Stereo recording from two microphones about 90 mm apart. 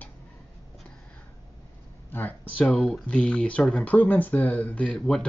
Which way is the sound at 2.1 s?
20° left (ahead or behind).